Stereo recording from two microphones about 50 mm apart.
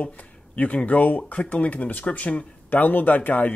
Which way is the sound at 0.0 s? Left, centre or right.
Left.